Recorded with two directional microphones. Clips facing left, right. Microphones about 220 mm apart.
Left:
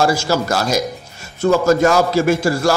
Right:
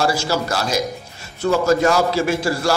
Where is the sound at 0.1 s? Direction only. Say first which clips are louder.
Left 3 dB; 45° left (ahead or behind).